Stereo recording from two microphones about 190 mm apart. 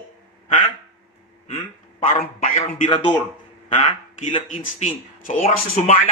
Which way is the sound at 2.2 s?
35° left (ahead or behind).